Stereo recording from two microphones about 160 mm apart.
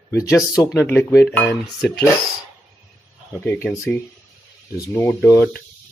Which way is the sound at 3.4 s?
10° left (ahead or behind).